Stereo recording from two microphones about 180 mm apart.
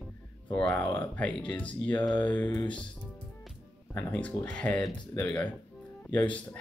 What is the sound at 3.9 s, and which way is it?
Speech, 5° left (ahead or behind).